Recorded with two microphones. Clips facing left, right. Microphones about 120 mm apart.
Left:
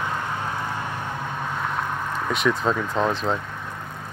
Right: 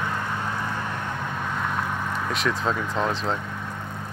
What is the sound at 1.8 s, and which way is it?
Speech, centre (ahead or behind).